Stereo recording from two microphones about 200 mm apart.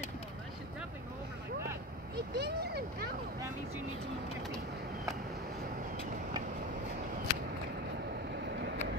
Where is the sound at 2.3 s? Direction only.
55° right (ahead or behind).